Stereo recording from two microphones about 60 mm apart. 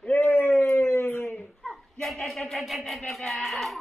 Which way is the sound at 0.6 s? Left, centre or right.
Left.